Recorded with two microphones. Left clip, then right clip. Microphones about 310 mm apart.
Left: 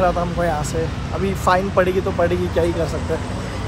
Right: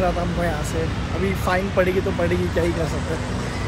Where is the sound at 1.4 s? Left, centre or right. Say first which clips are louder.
Left 5 dB; centre.